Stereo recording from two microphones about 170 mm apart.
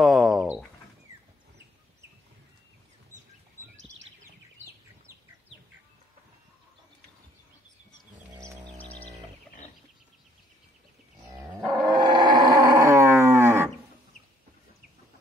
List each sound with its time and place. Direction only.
0.0 s a sound: centre (ahead or behind)
8.2 s livestock: 15° right (ahead or behind)
8.7 s music: 10° left (ahead or behind)
11.8 s livestock: 25° right (ahead or behind)